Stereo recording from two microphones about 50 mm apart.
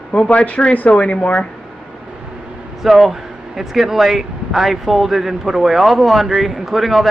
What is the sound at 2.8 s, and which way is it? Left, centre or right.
Speech, centre.